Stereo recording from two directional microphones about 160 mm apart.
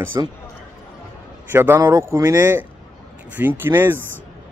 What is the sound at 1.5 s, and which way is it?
Speech, 15° right (ahead or behind).